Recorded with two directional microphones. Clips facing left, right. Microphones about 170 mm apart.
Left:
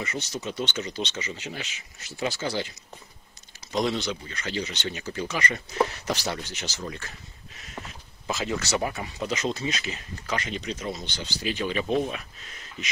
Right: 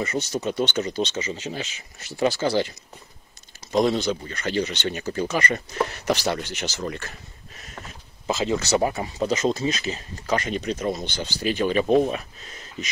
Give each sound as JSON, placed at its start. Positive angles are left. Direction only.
{"t": 0.0, "sound": "speech", "side_deg": -45}
{"t": 1.3, "sound": "speech", "side_deg": -30}
{"t": 2.4, "sound": "speech", "side_deg": -50}
{"t": 3.7, "sound": "speech", "side_deg": -45}
{"t": 6.0, "sound": "speech", "side_deg": -70}
{"t": 8.3, "sound": "speech", "side_deg": -25}
{"t": 9.4, "sound": "speech", "side_deg": -40}